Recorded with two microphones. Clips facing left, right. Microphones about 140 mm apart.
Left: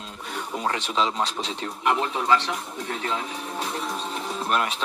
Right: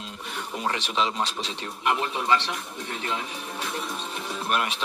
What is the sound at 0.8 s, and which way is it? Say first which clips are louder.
Speech: left 2 dB; 20° right (ahead or behind).